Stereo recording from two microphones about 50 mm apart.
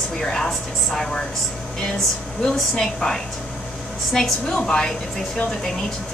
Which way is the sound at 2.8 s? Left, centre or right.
Centre.